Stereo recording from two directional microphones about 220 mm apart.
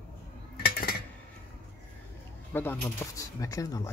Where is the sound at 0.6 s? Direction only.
45° left (ahead or behind).